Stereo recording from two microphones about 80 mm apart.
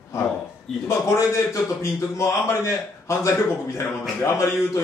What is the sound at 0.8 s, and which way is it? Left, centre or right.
A man's voice, left.